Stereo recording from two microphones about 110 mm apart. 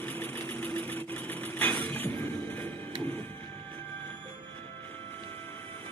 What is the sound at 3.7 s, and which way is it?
Music, 15° left (ahead or behind).